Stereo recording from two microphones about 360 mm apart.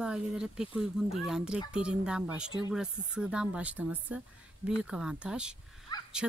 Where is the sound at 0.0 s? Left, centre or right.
Centre.